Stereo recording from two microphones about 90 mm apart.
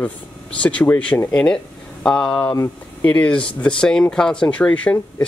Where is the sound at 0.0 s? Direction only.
15° left (ahead or behind).